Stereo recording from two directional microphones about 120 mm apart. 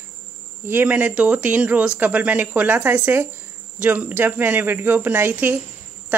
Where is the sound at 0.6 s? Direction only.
15° right (ahead or behind).